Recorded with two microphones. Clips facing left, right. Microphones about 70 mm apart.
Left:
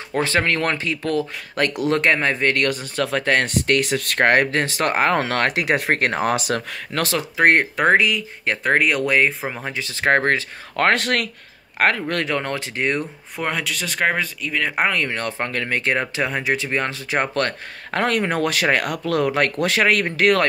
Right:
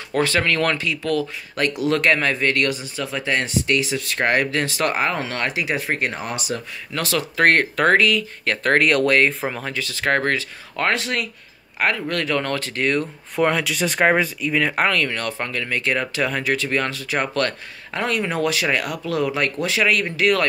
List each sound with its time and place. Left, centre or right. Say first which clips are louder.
0.1 s speech: even; left
3.0 s speech: left 5 dB; left
5.1 s speech: left 5 dB; left
6.9 s speech: left 2 dB; left
7.3 s speech: left 1 dB; centre
9.7 s speech: left 4 dB; left
10.8 s speech: left 3 dB; left
12.1 s speech: even; left
13.4 s speech: right 5 dB; centre
13.7 s speech: right 4 dB; centre
14.8 s speech: right 1 dB; centre
17.9 s speech: left 2 dB; left